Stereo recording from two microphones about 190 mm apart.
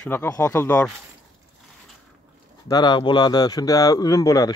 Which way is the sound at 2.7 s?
20° left (ahead or behind).